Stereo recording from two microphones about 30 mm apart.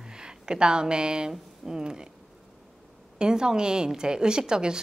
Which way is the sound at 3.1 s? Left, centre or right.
Right.